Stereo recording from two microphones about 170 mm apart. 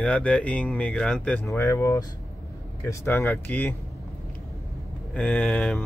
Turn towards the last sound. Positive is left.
turn(degrees=0)  # may be behind; listen again after turning